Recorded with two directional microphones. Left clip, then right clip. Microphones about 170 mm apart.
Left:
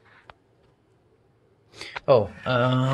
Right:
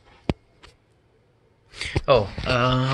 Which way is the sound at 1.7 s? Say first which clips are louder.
Right 1 dB; 20° left (ahead or behind).